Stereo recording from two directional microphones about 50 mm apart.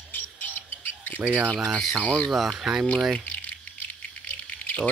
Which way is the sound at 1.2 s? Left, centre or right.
Right.